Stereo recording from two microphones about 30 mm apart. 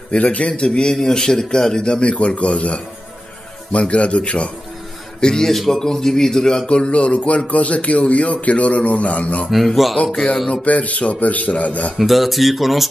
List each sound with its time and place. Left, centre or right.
0.2 s speech: left
0.5 s a man's voice: left
2.1 s a man's voice: left
5.2 s speech: centre
6.7 s speech: left
10.1 s a man's voice: left
10.5 s a man's voice: left
12.0 s speech: centre